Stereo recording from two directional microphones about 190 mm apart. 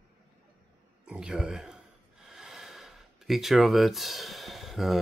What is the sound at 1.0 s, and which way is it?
A man's voice, 5° right (ahead or behind).